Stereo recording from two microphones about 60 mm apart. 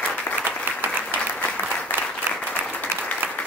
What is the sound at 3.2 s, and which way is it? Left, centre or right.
Applause, right.